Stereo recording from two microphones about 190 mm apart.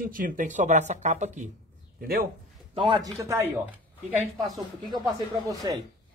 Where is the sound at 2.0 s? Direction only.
50° right (ahead or behind).